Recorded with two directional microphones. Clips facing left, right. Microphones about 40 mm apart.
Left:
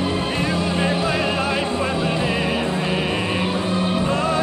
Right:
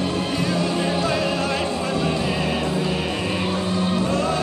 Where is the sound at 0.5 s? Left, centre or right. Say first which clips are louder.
Even; centre.